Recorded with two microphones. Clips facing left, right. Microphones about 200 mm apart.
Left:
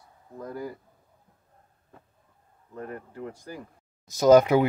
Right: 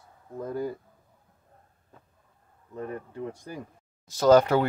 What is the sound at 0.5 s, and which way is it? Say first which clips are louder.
Speech: right 4 dB; 25° right (ahead or behind).